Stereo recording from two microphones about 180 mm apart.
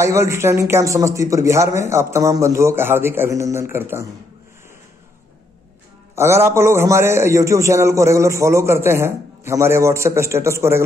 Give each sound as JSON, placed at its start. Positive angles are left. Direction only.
{"t": 0.0, "sound": "a man's voice", "side_deg": -15}
{"t": 6.1, "sound": "a man's voice", "side_deg": -15}